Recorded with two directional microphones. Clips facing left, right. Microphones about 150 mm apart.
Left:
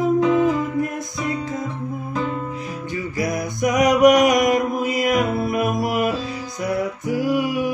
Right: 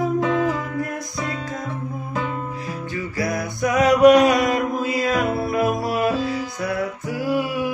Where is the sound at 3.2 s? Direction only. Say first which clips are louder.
Left 1 dB; 20° left (ahead or behind).